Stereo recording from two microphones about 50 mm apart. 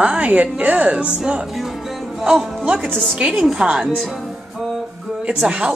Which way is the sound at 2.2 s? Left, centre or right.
Centre.